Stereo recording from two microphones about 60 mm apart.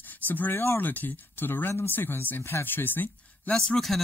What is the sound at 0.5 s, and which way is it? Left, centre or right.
Speech, left.